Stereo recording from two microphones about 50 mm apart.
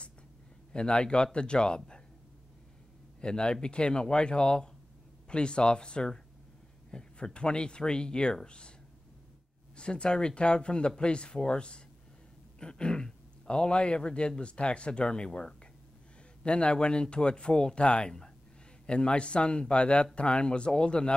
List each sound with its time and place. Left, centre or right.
0.7 s speech: centre
3.2 s speech: centre
9.8 s speech: centre